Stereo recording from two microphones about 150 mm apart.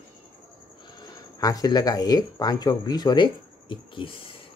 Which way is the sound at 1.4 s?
25° left (ahead or behind).